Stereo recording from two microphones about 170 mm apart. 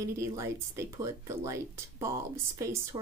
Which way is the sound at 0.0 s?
15° right (ahead or behind).